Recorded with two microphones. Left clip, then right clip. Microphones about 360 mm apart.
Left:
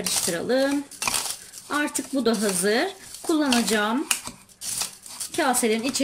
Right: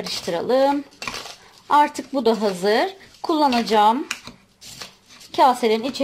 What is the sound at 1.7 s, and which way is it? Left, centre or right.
Speech, centre.